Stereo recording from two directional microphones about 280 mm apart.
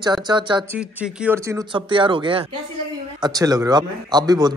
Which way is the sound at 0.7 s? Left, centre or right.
Centre.